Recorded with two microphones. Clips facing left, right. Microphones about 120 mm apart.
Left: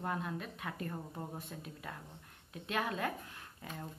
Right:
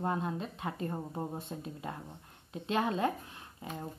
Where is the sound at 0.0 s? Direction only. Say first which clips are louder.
Right 5 dB; 25° right (ahead or behind).